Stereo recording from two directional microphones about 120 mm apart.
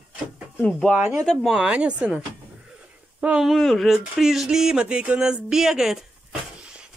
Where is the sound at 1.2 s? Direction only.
5° left (ahead or behind).